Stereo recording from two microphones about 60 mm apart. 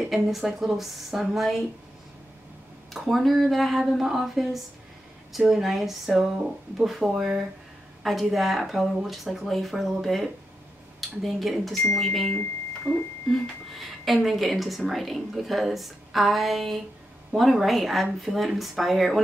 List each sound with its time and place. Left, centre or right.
0.1 s speech: centre
2.9 s speech: centre
12.9 s speech: centre
13.3 s speech: centre